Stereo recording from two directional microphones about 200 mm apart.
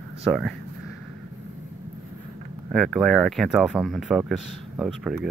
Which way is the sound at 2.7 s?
Centre (ahead or behind).